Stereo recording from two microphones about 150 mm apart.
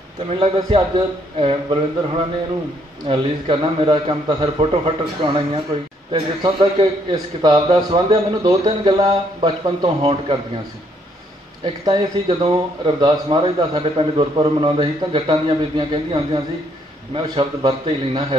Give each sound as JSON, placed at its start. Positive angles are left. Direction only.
{"t": 0.4, "sound": "a man's voice", "side_deg": -35}
{"t": 11.6, "sound": "speech", "side_deg": -35}